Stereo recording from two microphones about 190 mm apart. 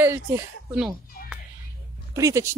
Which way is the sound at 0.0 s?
15° right (ahead or behind).